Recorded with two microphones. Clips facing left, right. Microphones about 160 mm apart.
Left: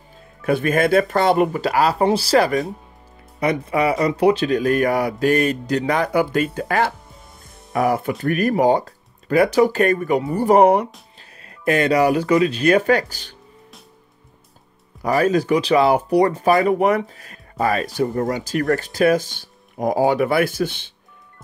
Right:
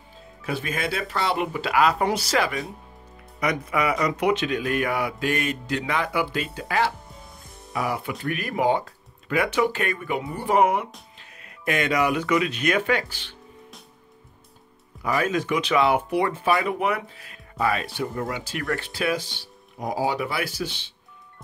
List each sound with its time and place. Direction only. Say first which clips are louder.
0.4 s speech: left 11 dB; 50° left (ahead or behind)
15.0 s speech: left 7 dB; 40° left (ahead or behind)